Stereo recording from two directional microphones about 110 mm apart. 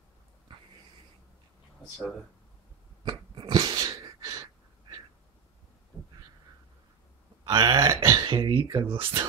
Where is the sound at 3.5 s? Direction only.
35° right (ahead or behind).